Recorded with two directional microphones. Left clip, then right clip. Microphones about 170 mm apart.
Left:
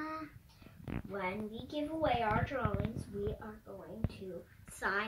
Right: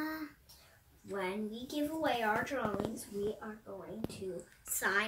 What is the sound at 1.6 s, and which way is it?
A woman's voice, 15° right (ahead or behind).